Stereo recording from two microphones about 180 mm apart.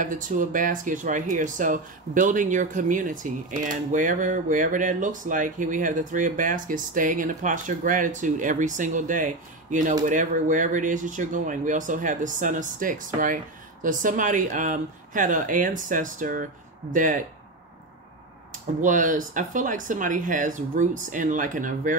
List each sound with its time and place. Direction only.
0.0 s speech: 45° right (ahead or behind)
18.5 s speech: 45° right (ahead or behind)